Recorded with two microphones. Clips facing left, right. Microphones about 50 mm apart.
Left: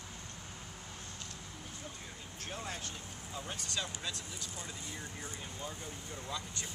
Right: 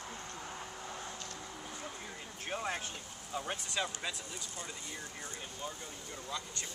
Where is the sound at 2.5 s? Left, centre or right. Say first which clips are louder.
Right 6 dB; right.